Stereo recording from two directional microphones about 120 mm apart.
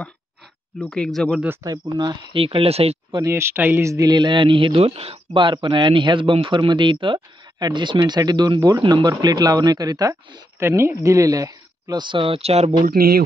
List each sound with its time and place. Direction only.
0.7 s speech: 5° left (ahead or behind)
1.6 s speech: 30° right (ahead or behind)
2.3 s speech: 50° right (ahead or behind)
3.3 s speech: 20° right (ahead or behind); by 12.7 s 60° right (ahead or behind)